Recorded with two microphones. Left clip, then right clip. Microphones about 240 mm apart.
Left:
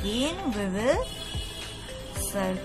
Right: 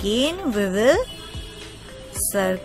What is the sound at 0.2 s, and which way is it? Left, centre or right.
Speech, right.